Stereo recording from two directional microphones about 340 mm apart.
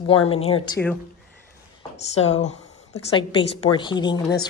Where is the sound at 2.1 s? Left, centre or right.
Centre.